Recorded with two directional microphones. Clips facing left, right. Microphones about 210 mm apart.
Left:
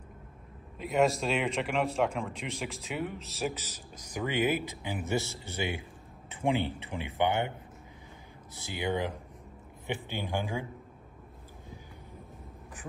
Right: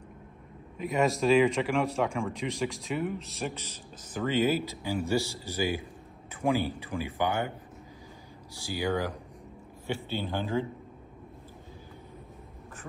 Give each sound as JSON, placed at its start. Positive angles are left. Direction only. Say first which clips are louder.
{"t": 0.7, "sound": "speech", "louder": "even", "side_deg": 0}
{"t": 8.5, "sound": "speech", "louder": "right 2 dB", "side_deg": 20}